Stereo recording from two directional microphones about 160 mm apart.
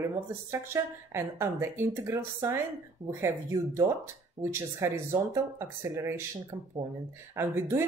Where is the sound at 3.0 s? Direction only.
45° right (ahead or behind).